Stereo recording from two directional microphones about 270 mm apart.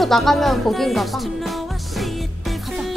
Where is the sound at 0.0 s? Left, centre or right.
Centre.